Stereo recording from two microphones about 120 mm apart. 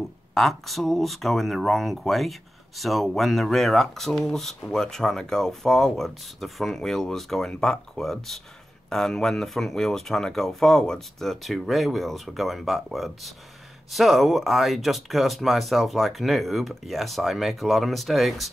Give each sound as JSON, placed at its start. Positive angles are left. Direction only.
{"t": 0.3, "sound": "speech", "side_deg": 0}